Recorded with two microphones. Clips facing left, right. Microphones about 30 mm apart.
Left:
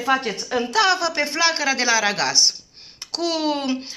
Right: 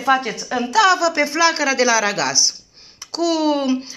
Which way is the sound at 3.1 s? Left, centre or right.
Left.